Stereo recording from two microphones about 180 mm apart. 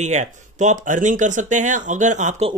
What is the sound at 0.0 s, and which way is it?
Speech, 40° right (ahead or behind).